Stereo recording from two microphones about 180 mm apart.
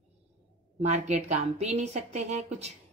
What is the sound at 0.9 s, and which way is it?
Speech, 40° right (ahead or behind).